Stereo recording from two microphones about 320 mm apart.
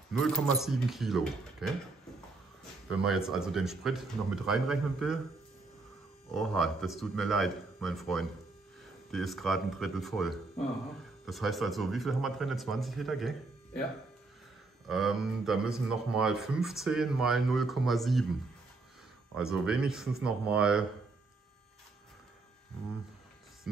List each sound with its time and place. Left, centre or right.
0.1 s speech: centre
3.0 s speech: centre
6.3 s speech: centre
14.9 s speech: centre
19.3 s speech: centre